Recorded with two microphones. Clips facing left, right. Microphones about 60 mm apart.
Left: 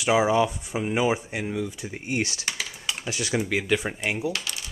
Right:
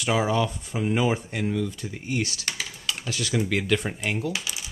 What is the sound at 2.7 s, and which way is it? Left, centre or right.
Typing, centre.